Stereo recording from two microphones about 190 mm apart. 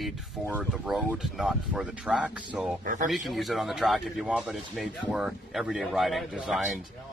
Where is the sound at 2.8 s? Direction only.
45° right (ahead or behind).